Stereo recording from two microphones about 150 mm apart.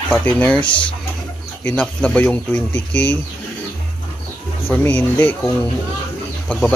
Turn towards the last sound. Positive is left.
turn(degrees=5)  # may be behind; listen again after turning